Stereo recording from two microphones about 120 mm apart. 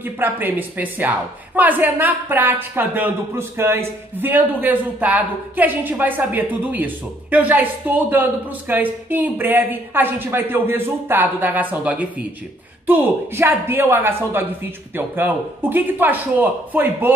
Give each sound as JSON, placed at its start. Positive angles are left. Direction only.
{"t": 0.0, "sound": "speech", "side_deg": -15}